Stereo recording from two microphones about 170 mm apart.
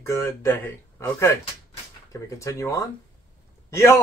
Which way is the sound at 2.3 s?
20° left (ahead or behind).